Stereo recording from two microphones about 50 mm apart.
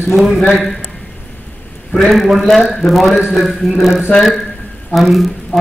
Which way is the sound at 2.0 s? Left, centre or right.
Centre.